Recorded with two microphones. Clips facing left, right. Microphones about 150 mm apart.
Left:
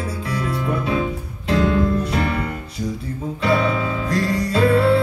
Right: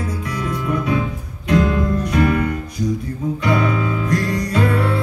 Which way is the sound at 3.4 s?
30° left (ahead or behind).